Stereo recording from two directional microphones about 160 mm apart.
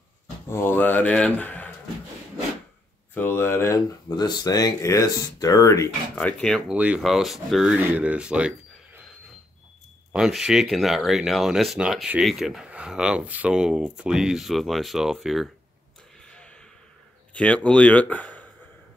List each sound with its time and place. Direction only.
0.5 s speech: 15° left (ahead or behind)
3.2 s speech: 15° left (ahead or behind)
6.1 s speech: 5° left (ahead or behind)
10.1 s speech: 5° right (ahead or behind)
17.3 s speech: 10° left (ahead or behind)